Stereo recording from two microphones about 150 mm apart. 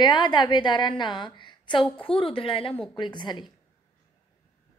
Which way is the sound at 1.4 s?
30° left (ahead or behind).